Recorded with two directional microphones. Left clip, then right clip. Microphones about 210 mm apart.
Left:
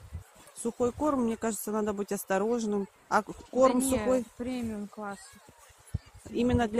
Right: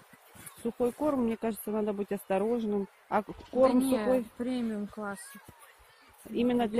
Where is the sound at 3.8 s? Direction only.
45° right (ahead or behind).